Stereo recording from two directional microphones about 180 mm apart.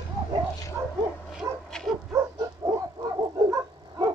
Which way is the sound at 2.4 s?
20° right (ahead or behind).